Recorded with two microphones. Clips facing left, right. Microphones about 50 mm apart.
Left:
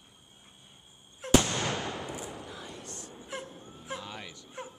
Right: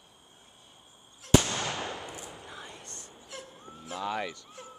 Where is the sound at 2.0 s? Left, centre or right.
Centre.